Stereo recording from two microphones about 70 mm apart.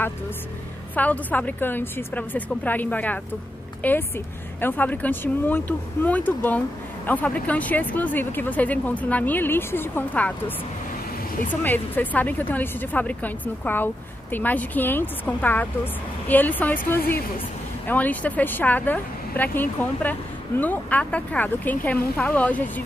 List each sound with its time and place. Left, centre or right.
0.9 s speech: left
11.6 s speech: left